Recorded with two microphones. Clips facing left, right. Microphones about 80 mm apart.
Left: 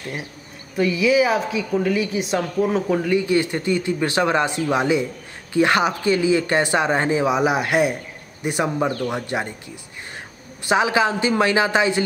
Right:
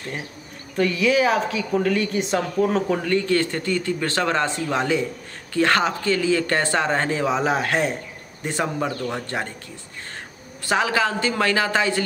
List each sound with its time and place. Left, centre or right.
0.7 s speech: centre
10.6 s a woman's voice: centre